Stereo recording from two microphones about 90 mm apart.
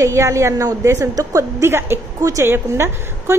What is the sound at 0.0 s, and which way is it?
A woman's voice, 30° right (ahead or behind).